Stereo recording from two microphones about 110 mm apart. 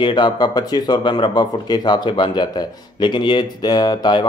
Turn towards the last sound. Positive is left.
turn(degrees=40)  # may be behind; listen again after turning